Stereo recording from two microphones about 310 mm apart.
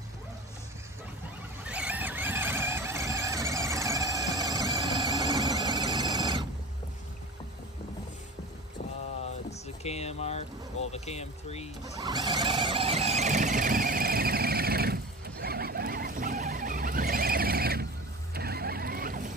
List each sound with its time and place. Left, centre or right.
1.7 s vehicle: centre
9.5 s a sound: centre
10.9 s speech: centre
11.8 s vehicle: centre; by 17.8 s right
18.3 s mechanisms: right